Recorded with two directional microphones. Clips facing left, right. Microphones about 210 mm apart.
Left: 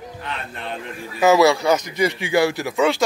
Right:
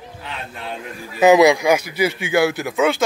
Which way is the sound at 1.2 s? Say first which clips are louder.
Right 3 dB; 15° right (ahead or behind).